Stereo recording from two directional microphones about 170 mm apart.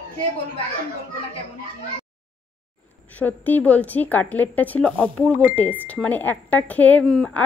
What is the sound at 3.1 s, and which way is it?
A woman's voice, 10° left (ahead or behind).